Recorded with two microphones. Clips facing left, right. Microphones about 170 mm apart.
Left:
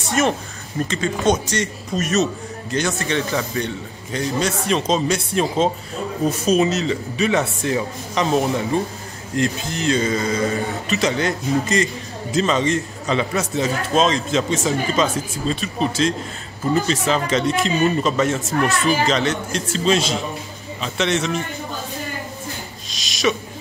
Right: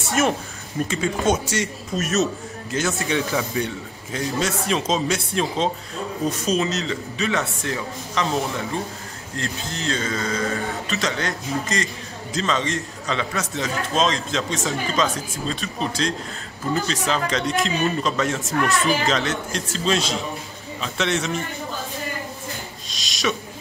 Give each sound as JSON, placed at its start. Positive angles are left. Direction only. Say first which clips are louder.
{"t": 0.2, "sound": "speech", "louder": "left 1 dB", "side_deg": 0}
{"t": 6.5, "sound": "speech", "louder": "left 7 dB", "side_deg": 15}
{"t": 22.8, "sound": "a sound", "louder": "left 5 dB", "side_deg": 0}